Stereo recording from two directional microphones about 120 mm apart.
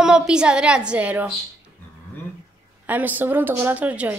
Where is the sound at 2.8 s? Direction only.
15° right (ahead or behind).